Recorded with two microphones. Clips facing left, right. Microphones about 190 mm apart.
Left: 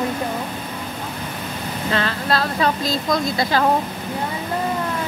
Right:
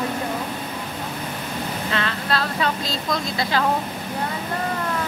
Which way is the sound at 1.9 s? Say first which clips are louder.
Left 5 dB; 40° left (ahead or behind).